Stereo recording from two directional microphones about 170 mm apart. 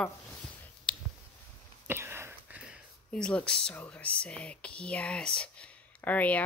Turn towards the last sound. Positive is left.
turn(degrees=10)  # may be behind; listen again after turning